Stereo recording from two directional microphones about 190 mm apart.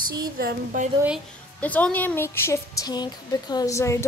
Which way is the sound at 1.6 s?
10° left (ahead or behind).